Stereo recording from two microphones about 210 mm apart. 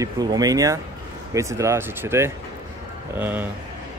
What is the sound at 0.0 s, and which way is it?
Speech, 20° right (ahead or behind).